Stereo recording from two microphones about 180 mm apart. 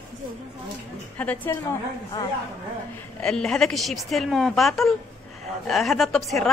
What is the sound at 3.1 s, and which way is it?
A woman's voice, 5° left (ahead or behind).